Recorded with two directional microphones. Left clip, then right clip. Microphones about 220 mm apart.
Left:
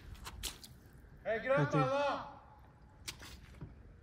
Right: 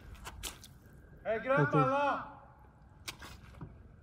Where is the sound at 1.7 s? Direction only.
35° right (ahead or behind).